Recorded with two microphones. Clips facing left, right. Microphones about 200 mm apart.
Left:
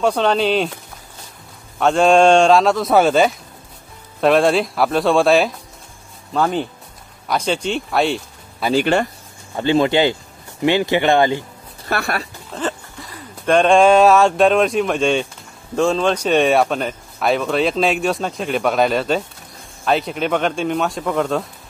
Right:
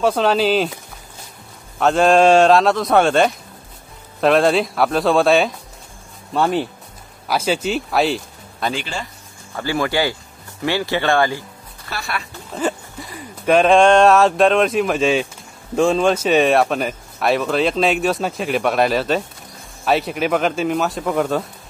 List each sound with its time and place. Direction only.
0.0 s speech: centre (ahead or behind)
1.8 s speech: centre (ahead or behind)
8.9 s speech: 65° left (ahead or behind)
9.6 s speech: 20° left (ahead or behind)
11.9 s speech: 50° left (ahead or behind)
12.5 s speech: 10° right (ahead or behind)